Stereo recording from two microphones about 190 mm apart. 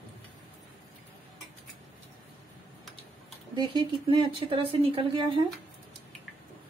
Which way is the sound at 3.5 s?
25° right (ahead or behind).